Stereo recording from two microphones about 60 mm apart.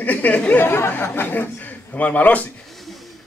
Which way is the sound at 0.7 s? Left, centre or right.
Left.